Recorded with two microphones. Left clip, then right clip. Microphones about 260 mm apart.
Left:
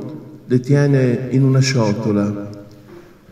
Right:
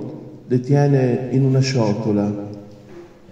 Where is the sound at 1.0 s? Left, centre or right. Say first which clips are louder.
Left 1 dB; left.